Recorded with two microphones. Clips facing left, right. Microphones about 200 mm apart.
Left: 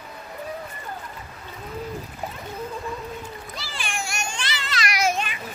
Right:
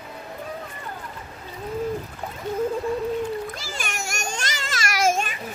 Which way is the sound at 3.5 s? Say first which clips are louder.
Even; 45° right (ahead or behind).